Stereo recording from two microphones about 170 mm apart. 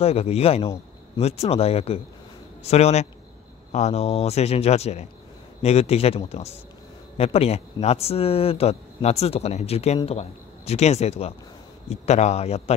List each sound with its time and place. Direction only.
0.0 s speech: 35° left (ahead or behind)